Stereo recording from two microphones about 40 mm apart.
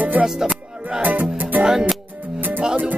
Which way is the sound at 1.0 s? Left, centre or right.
Right.